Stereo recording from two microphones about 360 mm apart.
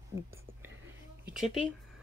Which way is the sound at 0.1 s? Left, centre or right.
Centre.